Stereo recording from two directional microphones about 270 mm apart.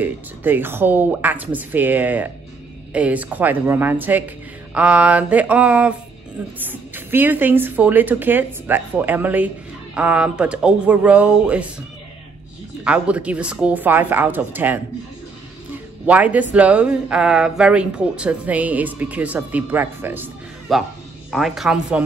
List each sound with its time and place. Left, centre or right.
0.0 s a woman's voice: centre
12.8 s speech: centre
16.1 s speech: centre